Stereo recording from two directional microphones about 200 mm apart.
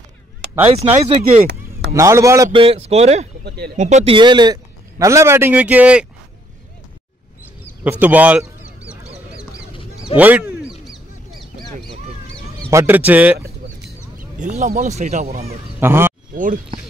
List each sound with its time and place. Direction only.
0.7 s speech: 30° right (ahead or behind)
2.0 s speech: 15° right (ahead or behind)
2.6 s speech: 30° right (ahead or behind)
3.4 s speech: 55° right (ahead or behind)
3.8 s speech: 30° right (ahead or behind); by 6.0 s 5° right (ahead or behind)
7.8 s goose: 10° right (ahead or behind)
10.1 s quack: 10° right (ahead or behind)
12.6 s fowl: 10° right (ahead or behind)
14.4 s speech: 40° right (ahead or behind)
15.8 s speech: 10° right (ahead or behind)
16.3 s speech: 40° right (ahead or behind)